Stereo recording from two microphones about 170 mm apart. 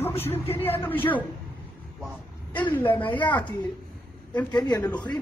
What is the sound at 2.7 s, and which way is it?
Speech, 10° left (ahead or behind).